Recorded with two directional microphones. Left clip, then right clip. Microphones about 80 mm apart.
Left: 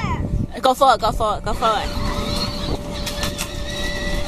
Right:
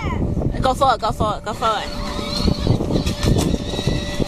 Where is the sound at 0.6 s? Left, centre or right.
Centre.